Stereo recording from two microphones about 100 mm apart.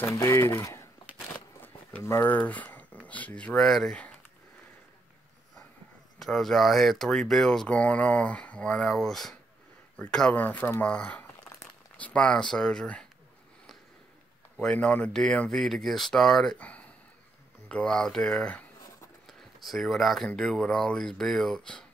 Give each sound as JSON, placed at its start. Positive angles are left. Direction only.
{"t": 0.1, "sound": "speech", "side_deg": 30}
{"t": 1.3, "sound": "a sound", "side_deg": 15}
{"t": 2.0, "sound": "speech", "side_deg": 25}
{"t": 6.1, "sound": "speech", "side_deg": 0}
{"t": 14.6, "sound": "speech", "side_deg": 15}
{"t": 16.5, "sound": "a sound", "side_deg": 15}
{"t": 17.6, "sound": "speech", "side_deg": 10}
{"t": 19.2, "sound": "a sound", "side_deg": 0}
{"t": 20.2, "sound": "speech", "side_deg": 5}